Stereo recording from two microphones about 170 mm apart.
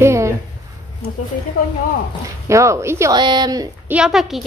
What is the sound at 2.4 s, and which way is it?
Speech, 15° right (ahead or behind).